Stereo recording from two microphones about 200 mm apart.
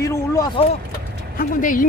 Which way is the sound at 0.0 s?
15° left (ahead or behind).